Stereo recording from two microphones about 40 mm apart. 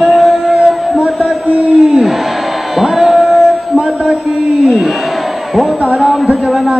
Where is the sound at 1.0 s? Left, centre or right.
Right.